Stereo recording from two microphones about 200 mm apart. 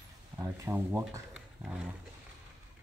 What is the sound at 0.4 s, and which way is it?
Speech, 15° right (ahead or behind).